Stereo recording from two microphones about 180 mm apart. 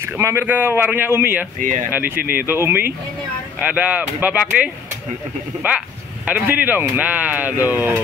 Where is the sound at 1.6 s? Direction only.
45° right (ahead or behind).